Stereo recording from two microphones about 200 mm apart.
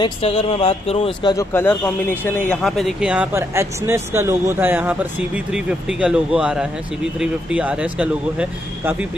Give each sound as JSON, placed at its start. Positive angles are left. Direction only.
{"t": 0.0, "sound": "speech", "side_deg": 30}
{"t": 1.3, "sound": "speech", "side_deg": 15}